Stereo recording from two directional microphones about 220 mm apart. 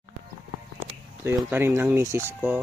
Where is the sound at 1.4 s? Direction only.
10° right (ahead or behind).